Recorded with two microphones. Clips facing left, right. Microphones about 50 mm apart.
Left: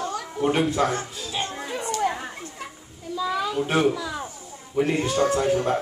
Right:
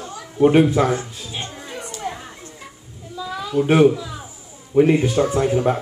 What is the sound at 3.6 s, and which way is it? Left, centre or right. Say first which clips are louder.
Speech: right 9 dB; centre.